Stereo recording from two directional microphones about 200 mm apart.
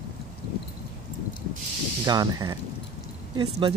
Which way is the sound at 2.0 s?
20° right (ahead or behind).